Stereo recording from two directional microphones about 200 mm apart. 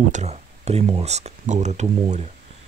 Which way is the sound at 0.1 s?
35° right (ahead or behind).